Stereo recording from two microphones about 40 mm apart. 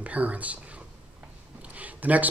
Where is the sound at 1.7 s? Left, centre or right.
Right.